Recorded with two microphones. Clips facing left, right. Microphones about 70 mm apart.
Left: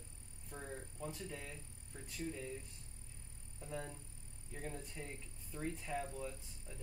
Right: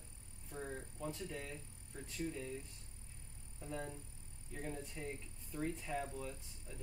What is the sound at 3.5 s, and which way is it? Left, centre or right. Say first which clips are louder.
Music: right 1 dB; centre.